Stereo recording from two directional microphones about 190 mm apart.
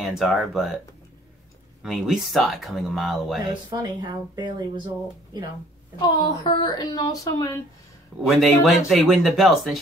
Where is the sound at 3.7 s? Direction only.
20° right (ahead or behind).